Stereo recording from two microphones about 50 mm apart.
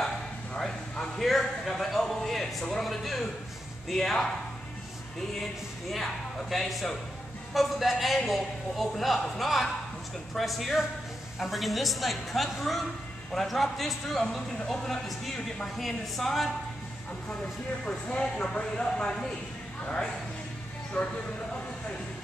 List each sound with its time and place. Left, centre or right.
0.6 s a sound: centre
1.2 s a man's voice: centre
6.5 s a man's voice: centre
17.8 s a woman's voice: centre